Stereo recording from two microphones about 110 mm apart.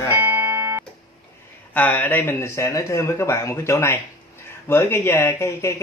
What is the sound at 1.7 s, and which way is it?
Speech, 15° left (ahead or behind).